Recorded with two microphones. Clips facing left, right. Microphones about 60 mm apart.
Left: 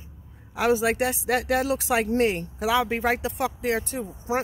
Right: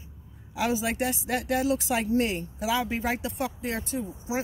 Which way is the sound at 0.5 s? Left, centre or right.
Left.